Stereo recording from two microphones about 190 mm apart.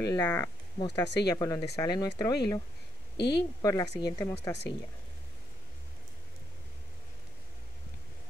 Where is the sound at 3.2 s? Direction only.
60° left (ahead or behind).